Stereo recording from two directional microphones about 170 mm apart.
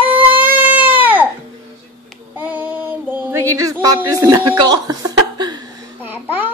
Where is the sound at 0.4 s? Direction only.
10° right (ahead or behind).